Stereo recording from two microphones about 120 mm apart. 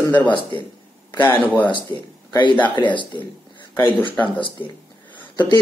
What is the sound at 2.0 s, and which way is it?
Speech, 45° left (ahead or behind).